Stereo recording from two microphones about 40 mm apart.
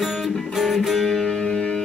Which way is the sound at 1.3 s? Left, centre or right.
Centre.